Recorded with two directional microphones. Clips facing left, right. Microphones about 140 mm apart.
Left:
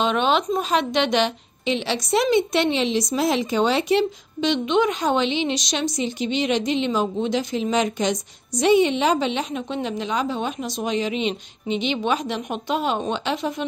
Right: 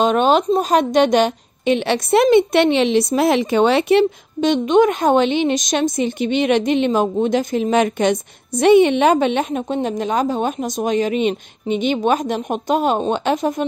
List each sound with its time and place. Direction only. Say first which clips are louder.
0.0 s a woman's voice: right 6 dB; 45° right (ahead or behind)